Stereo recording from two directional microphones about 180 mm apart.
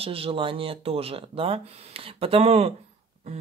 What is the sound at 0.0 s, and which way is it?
Speech, 30° right (ahead or behind).